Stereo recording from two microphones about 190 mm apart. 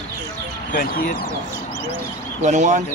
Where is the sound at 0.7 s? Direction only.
50° left (ahead or behind).